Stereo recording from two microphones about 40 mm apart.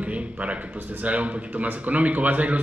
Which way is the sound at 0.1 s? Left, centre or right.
Right.